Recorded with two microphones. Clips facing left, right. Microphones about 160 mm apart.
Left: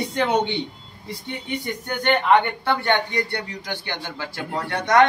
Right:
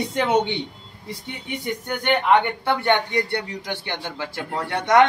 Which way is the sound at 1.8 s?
10° right (ahead or behind).